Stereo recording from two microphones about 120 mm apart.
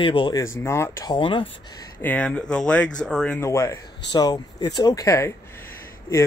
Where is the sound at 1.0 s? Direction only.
40° left (ahead or behind).